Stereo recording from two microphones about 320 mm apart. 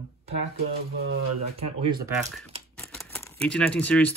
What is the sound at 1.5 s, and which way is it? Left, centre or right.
Speech, centre.